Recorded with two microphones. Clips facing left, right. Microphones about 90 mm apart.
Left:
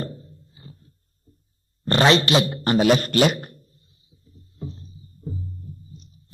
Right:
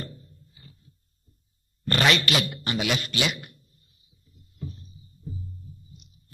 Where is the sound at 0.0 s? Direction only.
35° left (ahead or behind).